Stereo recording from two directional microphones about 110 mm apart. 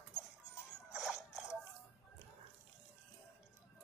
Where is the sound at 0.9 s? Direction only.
Centre (ahead or behind).